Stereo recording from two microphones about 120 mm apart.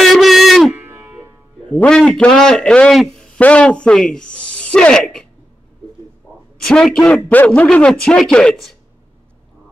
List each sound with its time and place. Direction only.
0.0 s a sound: centre (ahead or behind)
0.7 s music: 20° right (ahead or behind)
1.7 s a man's voice: 5° left (ahead or behind)
6.6 s a man's voice: 5° left (ahead or behind)